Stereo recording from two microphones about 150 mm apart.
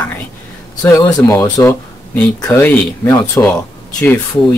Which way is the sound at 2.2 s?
10° left (ahead or behind).